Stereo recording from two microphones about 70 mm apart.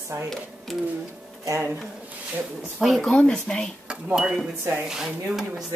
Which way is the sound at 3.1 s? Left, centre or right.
Centre.